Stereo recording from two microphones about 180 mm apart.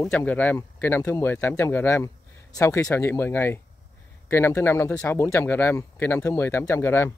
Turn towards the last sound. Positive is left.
turn(degrees=10)  # may be behind; listen again after turning